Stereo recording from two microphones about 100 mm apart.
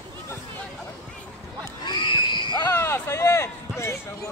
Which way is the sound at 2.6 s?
25° left (ahead or behind).